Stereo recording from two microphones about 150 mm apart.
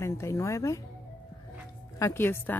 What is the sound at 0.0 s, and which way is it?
Speech, 20° left (ahead or behind).